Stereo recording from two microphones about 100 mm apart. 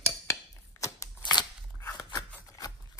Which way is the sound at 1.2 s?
45° left (ahead or behind).